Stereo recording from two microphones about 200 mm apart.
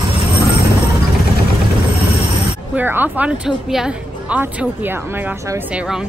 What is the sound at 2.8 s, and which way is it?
A woman's voice, 10° right (ahead or behind).